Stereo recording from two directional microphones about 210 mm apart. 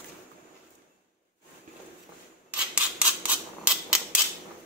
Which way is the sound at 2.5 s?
5° right (ahead or behind).